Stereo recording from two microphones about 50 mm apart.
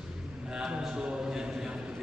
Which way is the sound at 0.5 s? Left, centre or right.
Centre.